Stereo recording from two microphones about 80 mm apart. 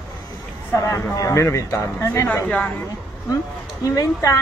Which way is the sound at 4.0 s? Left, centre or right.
Left.